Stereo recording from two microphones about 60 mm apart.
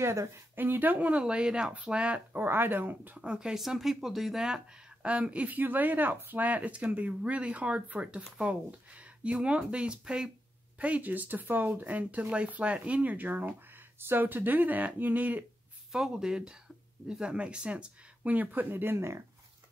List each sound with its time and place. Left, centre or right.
0.0 s speech: right
0.6 s speech: right
1.2 s speech: centre
2.3 s speech: right
3.2 s speech: centre
10.8 s speech: right
15.9 s speech: centre; by 19.2 s right